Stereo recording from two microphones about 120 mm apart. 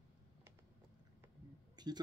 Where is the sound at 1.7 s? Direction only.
35° right (ahead or behind).